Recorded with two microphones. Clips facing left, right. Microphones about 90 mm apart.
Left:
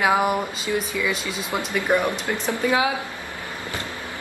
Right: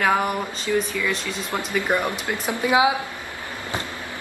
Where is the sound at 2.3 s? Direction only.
15° right (ahead or behind).